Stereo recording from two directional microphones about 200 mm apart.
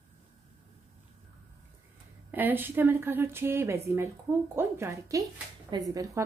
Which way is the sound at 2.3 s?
10° right (ahead or behind).